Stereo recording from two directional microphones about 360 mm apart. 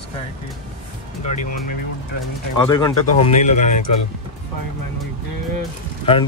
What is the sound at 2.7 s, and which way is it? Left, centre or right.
Speech, centre.